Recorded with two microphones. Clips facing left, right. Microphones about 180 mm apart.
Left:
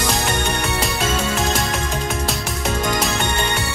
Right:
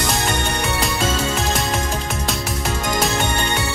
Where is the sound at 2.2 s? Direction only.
Centre (ahead or behind).